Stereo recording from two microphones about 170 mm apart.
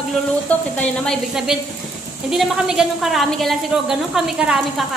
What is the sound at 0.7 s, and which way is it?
A woman's voice, 5° left (ahead or behind).